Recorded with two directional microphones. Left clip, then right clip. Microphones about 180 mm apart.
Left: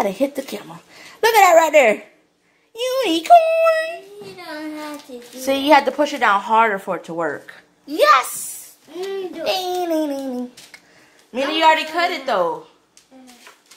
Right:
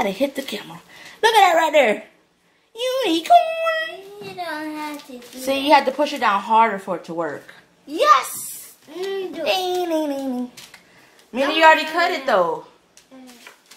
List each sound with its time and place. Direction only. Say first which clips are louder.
0.0 s a child's voice: left 1 dB; 25° left (ahead or behind)
5.4 s speech: left 2 dB; 30° left (ahead or behind)
9.0 s a child's voice: even; 20° left (ahead or behind)
11.3 s a woman's voice: right 2 dB; 10° left (ahead or behind)